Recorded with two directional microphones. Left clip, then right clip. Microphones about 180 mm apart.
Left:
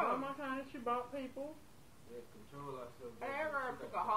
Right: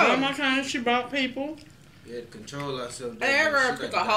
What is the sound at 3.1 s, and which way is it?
Speech, 25° right (ahead or behind).